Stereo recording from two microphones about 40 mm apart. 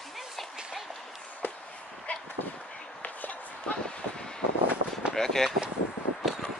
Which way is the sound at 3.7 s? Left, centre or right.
Left.